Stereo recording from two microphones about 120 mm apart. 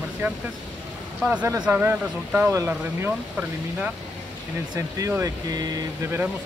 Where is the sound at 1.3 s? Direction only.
20° right (ahead or behind).